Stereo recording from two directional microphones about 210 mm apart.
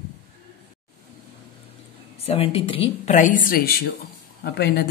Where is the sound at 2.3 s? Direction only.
25° left (ahead or behind).